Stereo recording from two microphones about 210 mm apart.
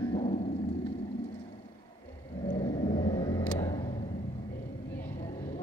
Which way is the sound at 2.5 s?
20° left (ahead or behind).